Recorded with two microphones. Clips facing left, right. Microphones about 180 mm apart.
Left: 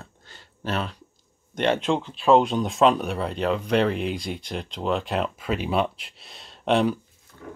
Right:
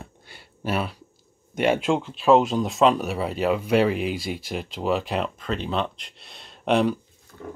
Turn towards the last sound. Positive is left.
turn(degrees=0)  # may be behind; listen again after turning